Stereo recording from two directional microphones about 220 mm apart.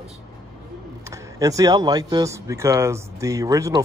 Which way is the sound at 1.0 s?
15° right (ahead or behind).